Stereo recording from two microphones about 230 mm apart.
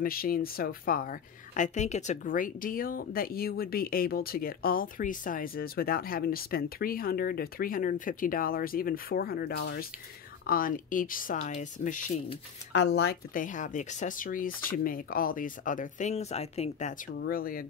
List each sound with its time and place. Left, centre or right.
0.0 s speech: left
12.7 s speech: left
17.1 s speech: left